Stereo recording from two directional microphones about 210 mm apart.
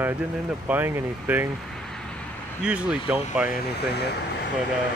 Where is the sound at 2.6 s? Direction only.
5° right (ahead or behind).